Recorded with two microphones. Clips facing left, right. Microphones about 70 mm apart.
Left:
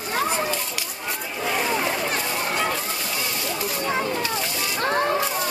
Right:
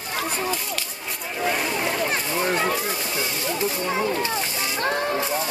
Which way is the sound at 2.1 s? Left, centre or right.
Right.